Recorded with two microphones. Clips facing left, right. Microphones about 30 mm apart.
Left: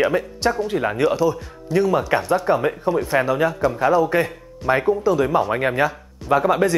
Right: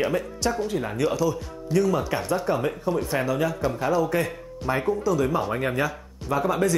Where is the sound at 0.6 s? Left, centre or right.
Left.